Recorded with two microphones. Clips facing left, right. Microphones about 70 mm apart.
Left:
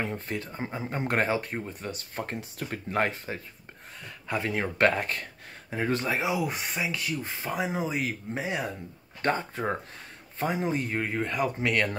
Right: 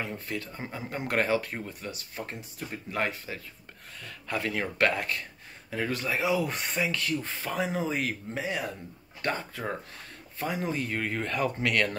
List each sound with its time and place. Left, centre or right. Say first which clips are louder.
0.1 s speech: left 2 dB; left
4.0 s speech: left 1 dB; left
6.5 s speech: right 1 dB; centre
8.4 s speech: left 1 dB; left